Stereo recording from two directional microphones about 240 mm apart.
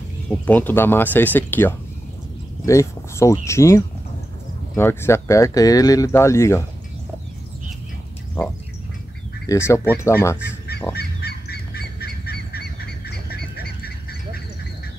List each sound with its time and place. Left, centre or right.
0.5 s speech: centre
9.5 s speech: centre
11.0 s goose: left